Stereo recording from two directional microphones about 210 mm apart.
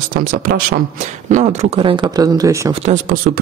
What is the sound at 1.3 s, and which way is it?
Speech, 35° right (ahead or behind).